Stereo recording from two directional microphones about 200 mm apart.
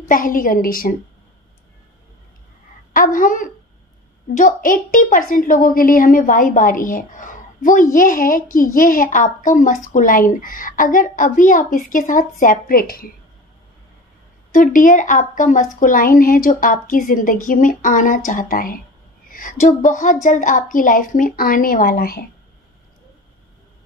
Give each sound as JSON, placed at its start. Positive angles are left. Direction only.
{"t": 0.1, "sound": "a woman's voice", "side_deg": 45}
{"t": 2.9, "sound": "a woman's voice", "side_deg": 40}
{"t": 14.5, "sound": "a woman's voice", "side_deg": 40}